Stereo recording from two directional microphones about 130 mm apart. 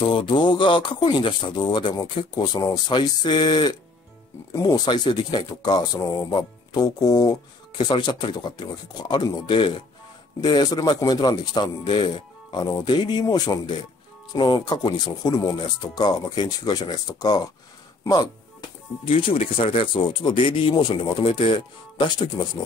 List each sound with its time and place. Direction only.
0.0 s speech: 40° left (ahead or behind)
4.5 s speech: 25° left (ahead or behind)